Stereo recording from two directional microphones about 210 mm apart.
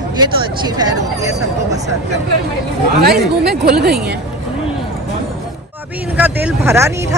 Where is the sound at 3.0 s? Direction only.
50° right (ahead or behind).